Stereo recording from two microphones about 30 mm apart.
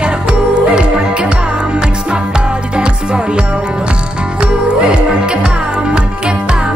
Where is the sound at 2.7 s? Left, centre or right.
Right.